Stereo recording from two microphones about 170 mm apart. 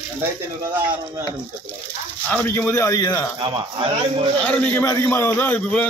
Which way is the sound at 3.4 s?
30° right (ahead or behind).